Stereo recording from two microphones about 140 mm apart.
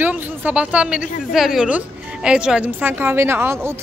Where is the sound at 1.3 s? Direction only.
Centre (ahead or behind).